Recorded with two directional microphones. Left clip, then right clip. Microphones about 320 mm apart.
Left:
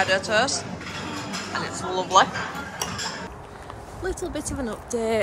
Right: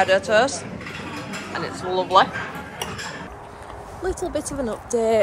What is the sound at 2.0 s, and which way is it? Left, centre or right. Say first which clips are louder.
Speech: right 2 dB; centre.